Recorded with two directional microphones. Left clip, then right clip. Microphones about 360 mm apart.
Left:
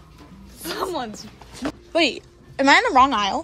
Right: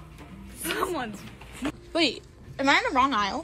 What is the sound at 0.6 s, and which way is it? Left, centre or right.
A woman's voice, centre.